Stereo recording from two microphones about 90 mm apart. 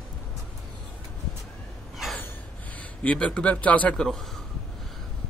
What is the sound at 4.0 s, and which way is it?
Speech, 5° left (ahead or behind).